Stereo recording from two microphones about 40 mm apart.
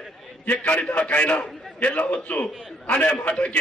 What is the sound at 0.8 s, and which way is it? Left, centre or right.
A man's voice, left.